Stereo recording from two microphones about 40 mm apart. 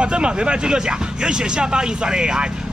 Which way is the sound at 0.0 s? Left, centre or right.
Right.